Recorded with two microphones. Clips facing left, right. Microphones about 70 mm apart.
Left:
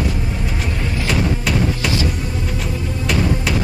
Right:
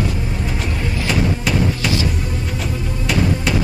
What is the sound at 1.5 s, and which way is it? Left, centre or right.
Music, centre.